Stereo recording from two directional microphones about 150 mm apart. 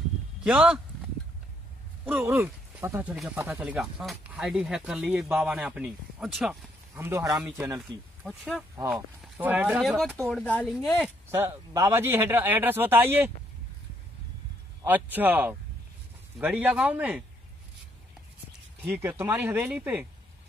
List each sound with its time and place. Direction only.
0.4 s speech: 5° right (ahead or behind)
2.0 s speech: 15° right (ahead or behind)
7.0 s speech: 20° right (ahead or behind)
9.8 s speech: centre (ahead or behind)
10.4 s speech: 10° left (ahead or behind)
11.3 s speech: 15° right (ahead or behind)
14.9 s speech: 10° right (ahead or behind)
18.8 s speech: 15° right (ahead or behind)